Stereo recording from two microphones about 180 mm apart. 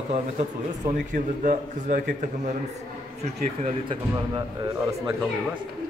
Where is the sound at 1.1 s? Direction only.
45° right (ahead or behind).